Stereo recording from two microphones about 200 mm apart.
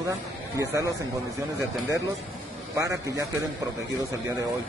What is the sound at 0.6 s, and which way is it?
Speech, 15° right (ahead or behind).